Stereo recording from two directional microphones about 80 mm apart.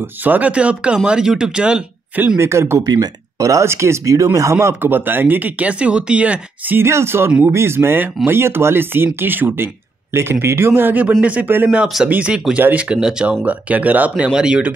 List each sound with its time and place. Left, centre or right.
0.0 s speech: right
2.3 s speech: right
2.8 s speech: right
12.1 s speech: centre